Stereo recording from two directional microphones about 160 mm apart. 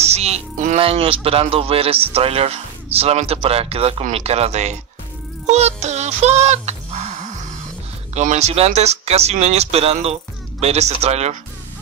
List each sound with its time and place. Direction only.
0.0 s music: 40° right (ahead or behind)
0.7 s speech: 35° right (ahead or behind)
5.5 s music: 45° right (ahead or behind)
8.1 s speech: 45° right (ahead or behind)